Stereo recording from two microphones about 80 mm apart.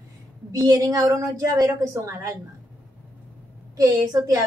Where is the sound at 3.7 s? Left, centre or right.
Right.